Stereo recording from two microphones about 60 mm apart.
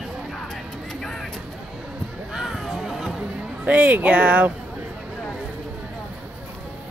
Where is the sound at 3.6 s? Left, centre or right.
Right.